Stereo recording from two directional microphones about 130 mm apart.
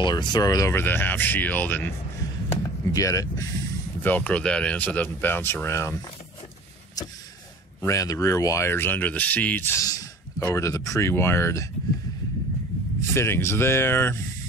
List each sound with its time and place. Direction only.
0.0 s speech: 35° left (ahead or behind); by 1.9 s 15° left (ahead or behind)
2.5 s speech: 25° left (ahead or behind)
4.0 s speech: 15° left (ahead or behind)
7.0 s speech: 30° left (ahead or behind)
13.1 s speech: 20° left (ahead or behind)